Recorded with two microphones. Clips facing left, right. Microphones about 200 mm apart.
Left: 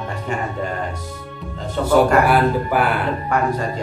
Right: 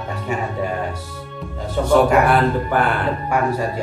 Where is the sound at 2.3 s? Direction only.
5° left (ahead or behind).